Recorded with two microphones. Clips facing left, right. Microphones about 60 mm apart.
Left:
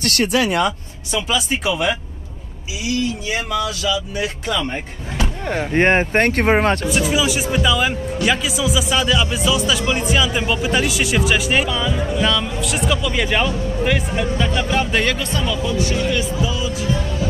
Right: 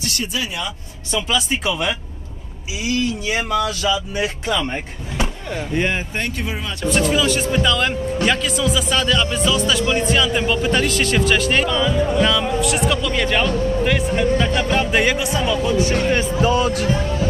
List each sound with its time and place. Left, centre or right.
0.0 s speech: left
1.1 s speech: centre
3.3 s speech: right
4.6 s speech: centre
5.4 s speech: left
6.9 s speech: centre
15.7 s speech: right
16.9 s speech: right